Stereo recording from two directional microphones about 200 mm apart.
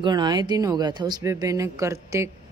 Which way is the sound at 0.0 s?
20° right (ahead or behind).